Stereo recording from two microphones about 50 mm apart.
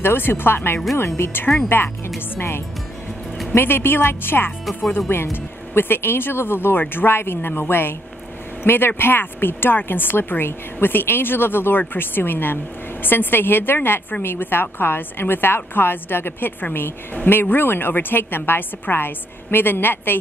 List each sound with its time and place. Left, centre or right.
0.0 s speech: left